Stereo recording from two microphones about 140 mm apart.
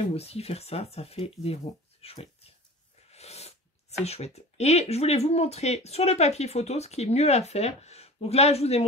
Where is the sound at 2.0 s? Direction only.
45° left (ahead or behind).